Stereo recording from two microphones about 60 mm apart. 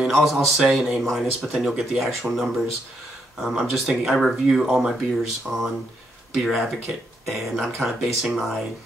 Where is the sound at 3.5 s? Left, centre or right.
Centre.